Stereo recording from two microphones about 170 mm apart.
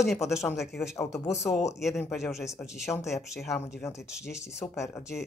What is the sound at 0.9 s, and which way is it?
Speech, 15° left (ahead or behind).